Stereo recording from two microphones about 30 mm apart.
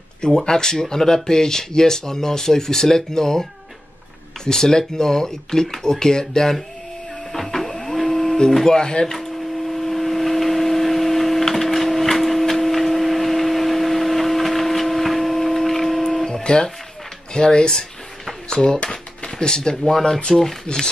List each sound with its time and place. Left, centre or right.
0.5 s speech: centre
4.5 s speech: centre
7.3 s printer: centre
8.6 s speech: left
9.7 s a sound: centre
16.4 s speech: left